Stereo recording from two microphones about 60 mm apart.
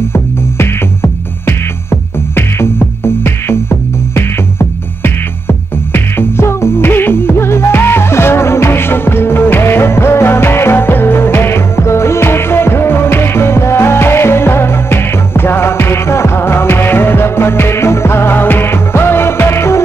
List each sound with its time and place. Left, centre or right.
0.1 s music: left